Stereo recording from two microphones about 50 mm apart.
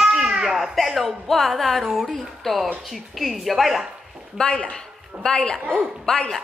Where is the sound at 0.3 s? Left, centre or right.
Centre.